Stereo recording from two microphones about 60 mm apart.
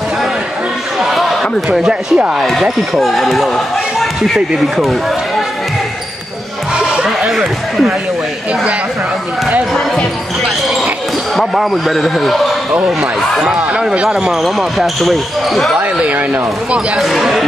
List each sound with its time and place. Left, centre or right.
0.9 s a sound: centre
1.7 s speech: centre
2.6 s speech: centre
6.8 s a sound: centre
11.3 s speech: centre
13.4 s speech: centre
15.8 s speech: right
17.0 s speech: centre